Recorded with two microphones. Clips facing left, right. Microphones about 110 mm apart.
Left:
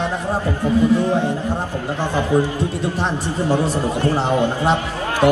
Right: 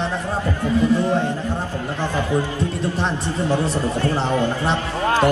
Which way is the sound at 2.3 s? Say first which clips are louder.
Left 6 dB; 20° left (ahead or behind).